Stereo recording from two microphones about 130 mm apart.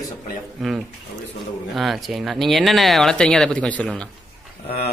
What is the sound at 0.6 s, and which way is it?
Speech, centre (ahead or behind).